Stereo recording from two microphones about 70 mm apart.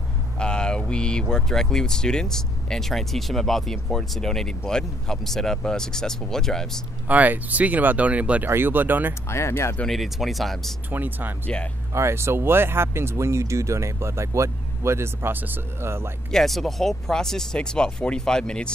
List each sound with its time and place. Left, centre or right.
0.4 s mantra: centre
1.3 s speech: centre
7.1 s speech: right
8.5 s speech: right
9.3 s speech: left
9.8 s speech: centre
10.9 s speech: right
11.4 s speech: centre
11.9 s speech: right
16.3 s speech: centre